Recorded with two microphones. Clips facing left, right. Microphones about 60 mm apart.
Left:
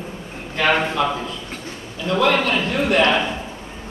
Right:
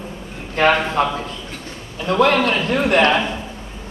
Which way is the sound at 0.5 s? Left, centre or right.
Right.